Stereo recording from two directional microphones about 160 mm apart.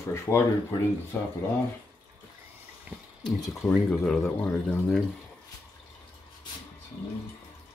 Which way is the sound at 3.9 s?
5° left (ahead or behind).